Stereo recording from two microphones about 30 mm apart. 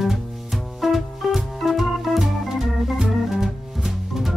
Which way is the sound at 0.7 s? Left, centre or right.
Centre.